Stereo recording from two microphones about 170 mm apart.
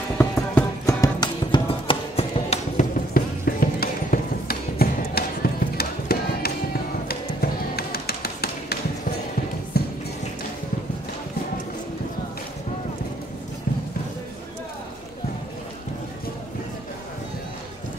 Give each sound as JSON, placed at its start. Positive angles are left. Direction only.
{"t": 0.2, "sound": "music", "side_deg": 15}
{"t": 3.2, "sound": "music", "side_deg": 60}
{"t": 9.8, "sound": "music", "side_deg": 65}